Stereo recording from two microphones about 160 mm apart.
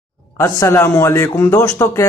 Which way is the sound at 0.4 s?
15° left (ahead or behind).